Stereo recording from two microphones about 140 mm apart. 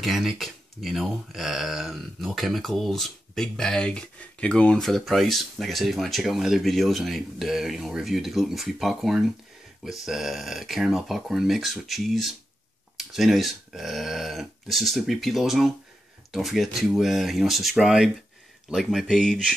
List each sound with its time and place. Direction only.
0.0 s speech: centre (ahead or behind)